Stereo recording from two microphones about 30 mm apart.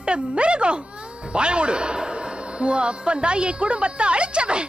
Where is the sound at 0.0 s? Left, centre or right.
Right.